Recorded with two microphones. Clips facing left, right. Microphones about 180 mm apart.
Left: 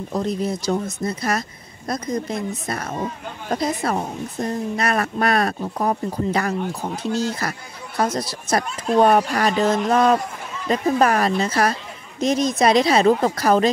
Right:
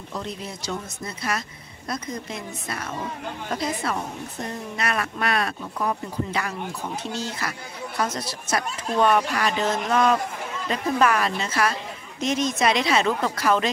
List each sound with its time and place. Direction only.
0.1 s a woman's voice: 45° left (ahead or behind)